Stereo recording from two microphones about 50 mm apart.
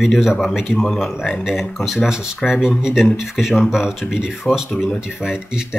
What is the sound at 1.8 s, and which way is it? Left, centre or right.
A man's voice, centre.